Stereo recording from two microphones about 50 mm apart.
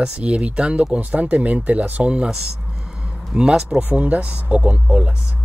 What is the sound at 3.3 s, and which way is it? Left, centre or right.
Speech, centre.